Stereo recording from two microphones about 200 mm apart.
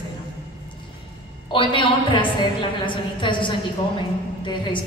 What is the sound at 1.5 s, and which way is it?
A woman's voice, 25° left (ahead or behind).